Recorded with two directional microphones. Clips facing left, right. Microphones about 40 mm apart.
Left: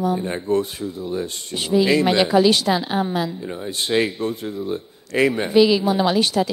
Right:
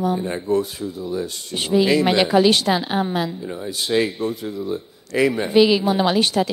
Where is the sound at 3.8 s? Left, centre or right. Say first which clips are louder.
Even; left.